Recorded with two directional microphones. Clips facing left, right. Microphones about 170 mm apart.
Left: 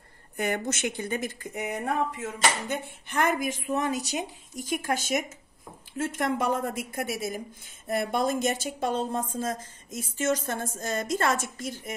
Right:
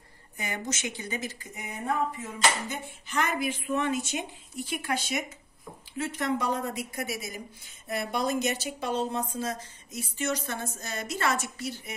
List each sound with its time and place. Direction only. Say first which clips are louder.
0.4 s speech: left 6 dB; 60° left (ahead or behind)